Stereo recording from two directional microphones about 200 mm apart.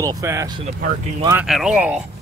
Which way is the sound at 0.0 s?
15° right (ahead or behind).